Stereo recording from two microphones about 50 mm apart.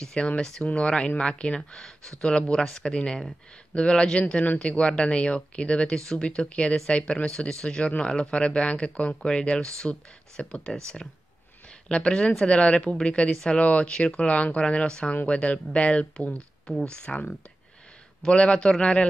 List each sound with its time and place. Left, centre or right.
0.0 s speech: centre
11.9 s speech: left